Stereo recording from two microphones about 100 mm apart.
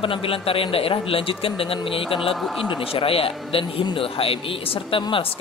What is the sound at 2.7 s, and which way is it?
A man's voice, 65° left (ahead or behind).